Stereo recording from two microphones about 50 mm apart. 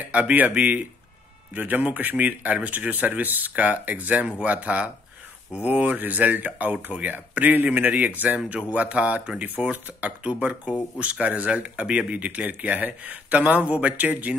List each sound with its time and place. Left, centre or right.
0.0 s speech: right